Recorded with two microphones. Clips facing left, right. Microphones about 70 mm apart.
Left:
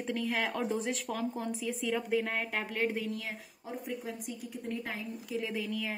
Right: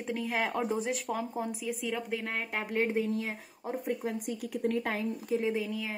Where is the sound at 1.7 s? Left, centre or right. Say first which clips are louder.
Left 3 dB; centre.